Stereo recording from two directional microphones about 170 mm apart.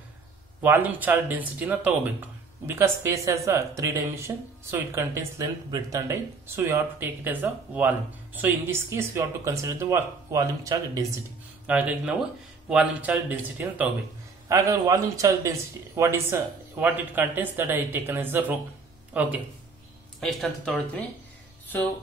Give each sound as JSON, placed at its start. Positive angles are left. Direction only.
{"t": 0.6, "sound": "speech", "side_deg": -10}
{"t": 11.6, "sound": "speech", "side_deg": -10}
{"t": 20.2, "sound": "speech", "side_deg": 0}